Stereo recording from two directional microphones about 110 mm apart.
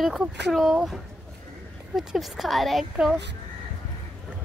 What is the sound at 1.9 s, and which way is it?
Speech, centre (ahead or behind).